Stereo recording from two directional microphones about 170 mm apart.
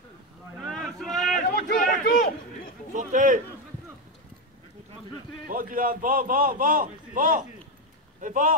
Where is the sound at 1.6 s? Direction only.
55° left (ahead or behind).